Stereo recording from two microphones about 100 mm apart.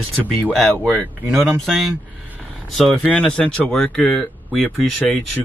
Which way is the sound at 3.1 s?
15° left (ahead or behind).